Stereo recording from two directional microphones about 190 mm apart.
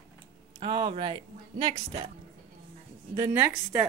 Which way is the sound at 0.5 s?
25° right (ahead or behind).